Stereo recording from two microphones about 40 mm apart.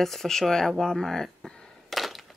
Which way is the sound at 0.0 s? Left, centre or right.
Centre.